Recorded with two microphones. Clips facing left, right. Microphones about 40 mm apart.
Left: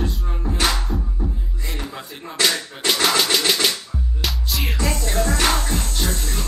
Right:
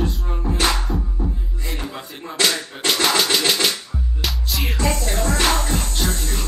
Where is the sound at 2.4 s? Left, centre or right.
Centre.